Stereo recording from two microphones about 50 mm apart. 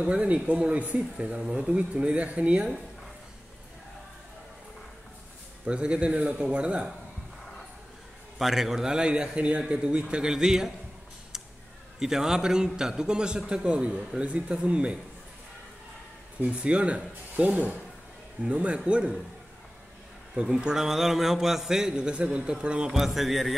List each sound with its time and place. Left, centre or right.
0.0 s speech: right
5.7 s speech: right
8.4 s a man's voice: centre
12.0 s a man's voice: centre
16.4 s speech: right
20.4 s a man's voice: centre
22.9 s speech: centre